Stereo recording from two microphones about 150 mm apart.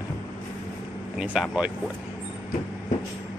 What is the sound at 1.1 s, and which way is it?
Speech, 5° right (ahead or behind).